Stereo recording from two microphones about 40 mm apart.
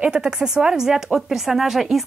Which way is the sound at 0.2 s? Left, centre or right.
Centre.